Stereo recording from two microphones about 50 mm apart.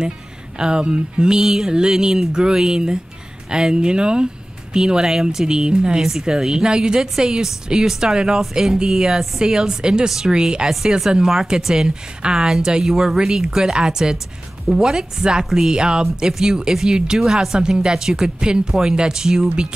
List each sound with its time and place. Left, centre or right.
0.6 s speech: centre
10.7 s speech: centre